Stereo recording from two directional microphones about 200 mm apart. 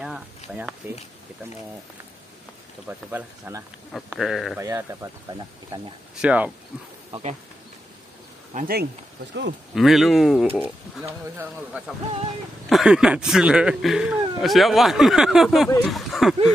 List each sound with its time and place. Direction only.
0.6 s speech: 10° right (ahead or behind)
2.9 s speech: 10° right (ahead or behind)
4.6 s speech: 15° right (ahead or behind)
6.2 s speech: 5° right (ahead or behind)
7.1 s speech: 30° right (ahead or behind)
8.5 s speech: 50° right (ahead or behind)
9.3 s speech: 60° right (ahead or behind)
9.8 s speech: centre (ahead or behind)